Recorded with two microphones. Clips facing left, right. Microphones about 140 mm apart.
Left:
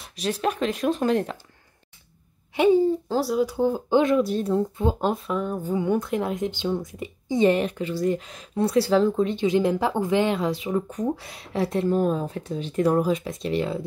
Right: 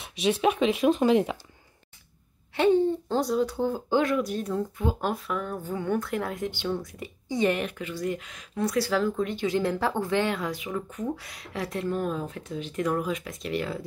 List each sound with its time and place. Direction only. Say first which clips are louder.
0.0 s speech: right 2 dB; centre (ahead or behind)
2.5 s speech: left 3 dB; 10° left (ahead or behind)